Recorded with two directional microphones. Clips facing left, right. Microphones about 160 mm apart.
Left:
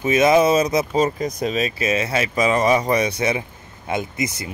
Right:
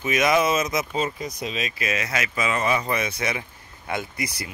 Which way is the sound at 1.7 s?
30° left (ahead or behind).